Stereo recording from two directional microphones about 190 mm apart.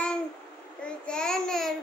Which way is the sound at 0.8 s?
5° left (ahead or behind).